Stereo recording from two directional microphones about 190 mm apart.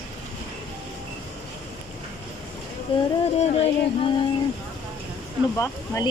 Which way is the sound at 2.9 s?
30° left (ahead or behind).